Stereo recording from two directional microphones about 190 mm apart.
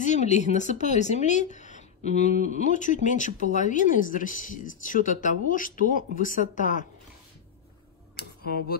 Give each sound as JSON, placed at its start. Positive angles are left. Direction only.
{"t": 0.0, "sound": "speech", "side_deg": 40}
{"t": 8.2, "sound": "tick-tock", "side_deg": 55}